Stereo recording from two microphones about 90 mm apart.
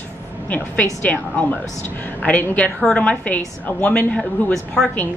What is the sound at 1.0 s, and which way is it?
Speech, 15° left (ahead or behind).